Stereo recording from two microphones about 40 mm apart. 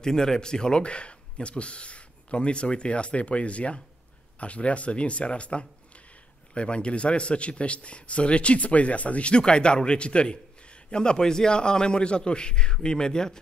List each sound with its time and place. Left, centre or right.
0.0 s speech: centre